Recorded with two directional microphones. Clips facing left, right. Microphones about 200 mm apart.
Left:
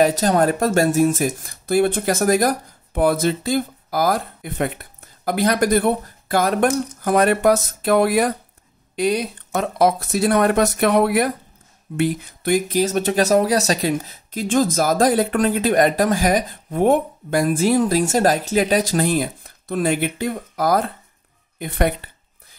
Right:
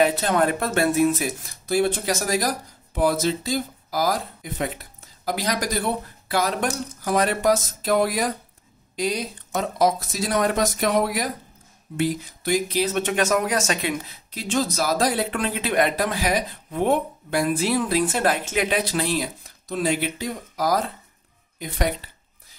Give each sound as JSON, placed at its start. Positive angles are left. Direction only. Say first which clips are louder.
{"t": 0.0, "sound": "speech", "louder": "left 4 dB", "side_deg": 40}